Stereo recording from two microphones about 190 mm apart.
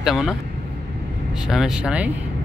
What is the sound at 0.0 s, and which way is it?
Speech, centre (ahead or behind).